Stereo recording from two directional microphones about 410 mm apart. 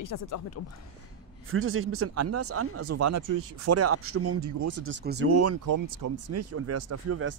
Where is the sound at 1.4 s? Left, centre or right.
Right.